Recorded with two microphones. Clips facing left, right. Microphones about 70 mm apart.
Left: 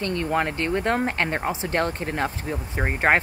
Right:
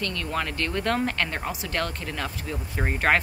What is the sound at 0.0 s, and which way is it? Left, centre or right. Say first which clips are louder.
Speech: left 5 dB; left.